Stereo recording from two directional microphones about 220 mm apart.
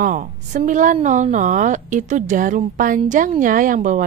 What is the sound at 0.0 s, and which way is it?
A woman's voice, 35° right (ahead or behind).